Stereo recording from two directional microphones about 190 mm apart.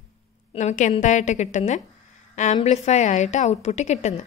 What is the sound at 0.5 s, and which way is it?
A woman's voice, 35° left (ahead or behind).